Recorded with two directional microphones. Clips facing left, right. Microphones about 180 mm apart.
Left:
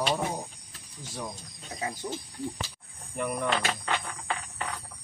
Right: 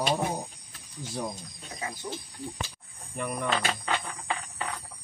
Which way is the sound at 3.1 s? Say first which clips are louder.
Left 2 dB; centre (ahead or behind).